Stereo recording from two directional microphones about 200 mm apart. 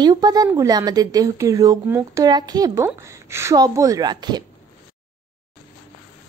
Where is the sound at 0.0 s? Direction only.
20° right (ahead or behind).